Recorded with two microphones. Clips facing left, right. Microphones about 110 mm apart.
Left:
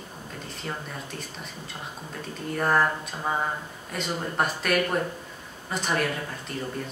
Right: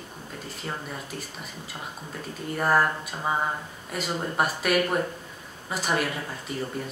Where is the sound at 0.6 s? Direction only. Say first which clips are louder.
Even; 5° right (ahead or behind).